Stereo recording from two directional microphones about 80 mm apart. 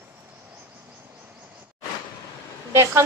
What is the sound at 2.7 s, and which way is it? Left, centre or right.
Speech, right.